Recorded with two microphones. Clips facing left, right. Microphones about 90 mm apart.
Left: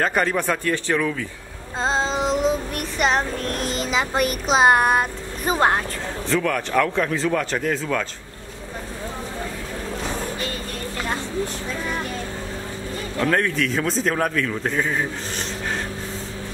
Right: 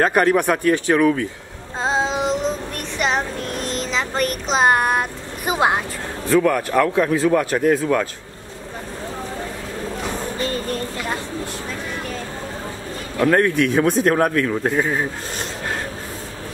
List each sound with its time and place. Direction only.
0.0 s speech: 10° right (ahead or behind)
1.8 s child singing: 5° right (ahead or behind)
3.0 s speech: centre (ahead or behind)
5.4 s speech: 10° right (ahead or behind)
10.4 s a sound: 40° right (ahead or behind)
13.2 s speech: 20° right (ahead or behind)